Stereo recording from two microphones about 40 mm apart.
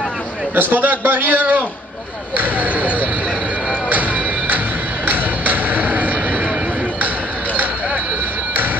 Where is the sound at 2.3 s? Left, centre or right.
Right.